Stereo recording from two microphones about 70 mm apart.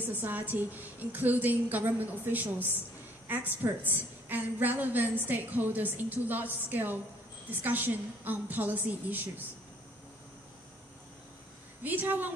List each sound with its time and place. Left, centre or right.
0.0 s a woman's voice: right
11.8 s a woman's voice: right